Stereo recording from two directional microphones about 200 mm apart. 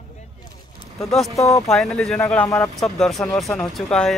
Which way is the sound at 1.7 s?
5° left (ahead or behind).